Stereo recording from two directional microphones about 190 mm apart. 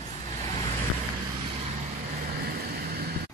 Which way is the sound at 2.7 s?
55° right (ahead or behind).